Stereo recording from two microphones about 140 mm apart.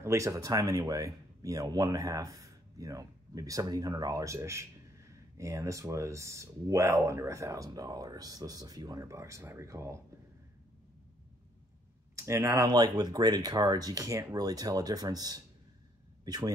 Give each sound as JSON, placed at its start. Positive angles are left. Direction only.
{"t": 0.0, "sound": "speech", "side_deg": -20}
{"t": 12.2, "sound": "speech", "side_deg": -20}